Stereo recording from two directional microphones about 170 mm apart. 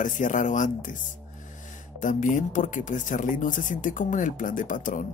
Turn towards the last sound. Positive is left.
turn(degrees=50)  # may be behind; listen again after turning